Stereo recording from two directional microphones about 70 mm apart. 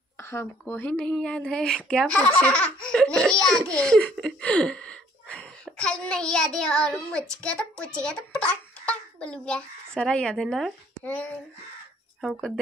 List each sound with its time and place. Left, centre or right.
0.2 s a sound: left
0.7 s speech: left; by 10.7 s centre
11.1 s speech: left